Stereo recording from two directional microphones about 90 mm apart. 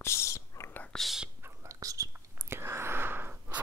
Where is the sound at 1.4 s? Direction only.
35° right (ahead or behind).